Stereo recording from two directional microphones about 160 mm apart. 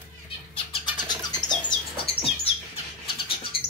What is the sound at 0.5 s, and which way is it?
Vehicle, 30° left (ahead or behind).